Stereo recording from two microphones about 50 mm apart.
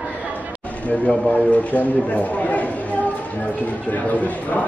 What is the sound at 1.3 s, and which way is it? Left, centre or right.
Speech, left.